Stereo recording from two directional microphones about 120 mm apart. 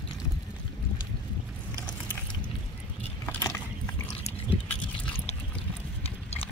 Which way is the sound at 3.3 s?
25° left (ahead or behind).